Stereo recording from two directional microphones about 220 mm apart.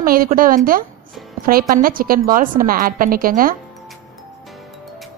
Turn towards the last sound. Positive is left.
turn(degrees=-40)  # may be behind; listen again after turning